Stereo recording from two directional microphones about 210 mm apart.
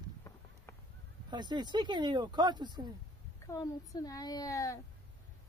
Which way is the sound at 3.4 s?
15° left (ahead or behind).